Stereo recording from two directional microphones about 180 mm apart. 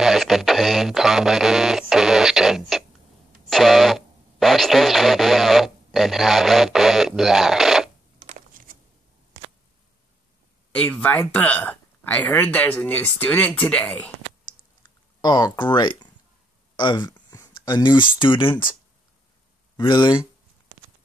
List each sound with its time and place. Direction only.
0.0 s speech: centre (ahead or behind)
8.3 s a sound: 50° right (ahead or behind)
10.7 s speech: 10° left (ahead or behind)
14.8 s a sound: 20° left (ahead or behind)
16.7 s speech: 25° left (ahead or behind)
19.8 s speech: 25° left (ahead or behind)